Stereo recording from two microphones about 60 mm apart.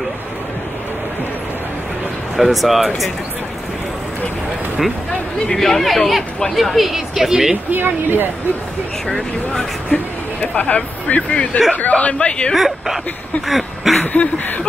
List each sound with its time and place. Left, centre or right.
2.3 s a woman's voice: centre
5.5 s a woman's voice: centre
7.7 s speech: right
9.1 s speech: centre
9.9 s a woman's voice: left
12.5 s a woman's voice: centre
13.5 s a sound: centre
14.0 s a woman's voice: left